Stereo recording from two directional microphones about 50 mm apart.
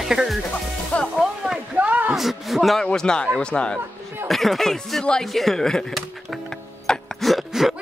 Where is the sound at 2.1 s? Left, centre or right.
Centre.